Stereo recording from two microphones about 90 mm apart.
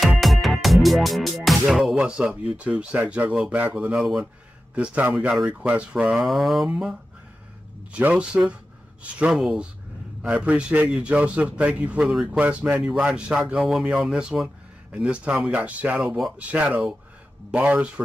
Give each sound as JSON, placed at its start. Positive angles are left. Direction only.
{"t": 0.2, "sound": "music", "side_deg": 0}
{"t": 2.0, "sound": "a man's voice", "side_deg": -10}
{"t": 6.2, "sound": "a sound", "side_deg": 0}
{"t": 7.9, "sound": "a man's voice", "side_deg": -15}